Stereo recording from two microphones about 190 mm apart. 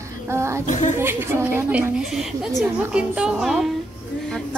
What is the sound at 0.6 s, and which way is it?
Speech, 40° left (ahead or behind).